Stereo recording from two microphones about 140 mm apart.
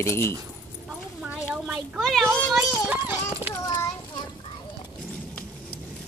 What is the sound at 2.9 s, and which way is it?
Clip-clop, 15° right (ahead or behind).